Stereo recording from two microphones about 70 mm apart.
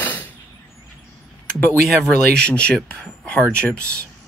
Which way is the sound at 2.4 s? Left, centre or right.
Centre.